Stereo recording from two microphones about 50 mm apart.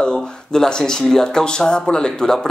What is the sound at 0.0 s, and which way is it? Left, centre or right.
Speech, centre.